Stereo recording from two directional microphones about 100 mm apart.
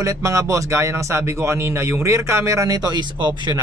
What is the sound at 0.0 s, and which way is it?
Speech, 35° right (ahead or behind).